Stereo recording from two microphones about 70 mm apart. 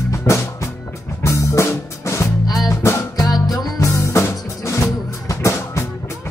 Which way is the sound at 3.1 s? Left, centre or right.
Left.